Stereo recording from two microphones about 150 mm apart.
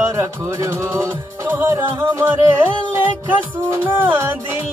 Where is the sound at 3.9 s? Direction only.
15° right (ahead or behind).